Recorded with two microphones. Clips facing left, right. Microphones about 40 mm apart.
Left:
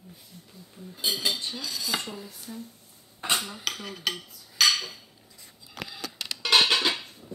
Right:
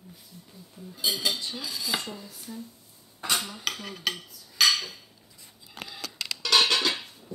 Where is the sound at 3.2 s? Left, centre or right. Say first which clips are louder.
Left 1 dB; left.